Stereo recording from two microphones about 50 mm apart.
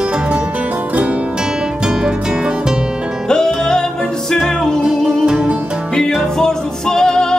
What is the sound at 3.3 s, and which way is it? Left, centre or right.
Music, centre.